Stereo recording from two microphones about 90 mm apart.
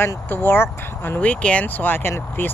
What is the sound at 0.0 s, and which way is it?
Speech, 25° left (ahead or behind).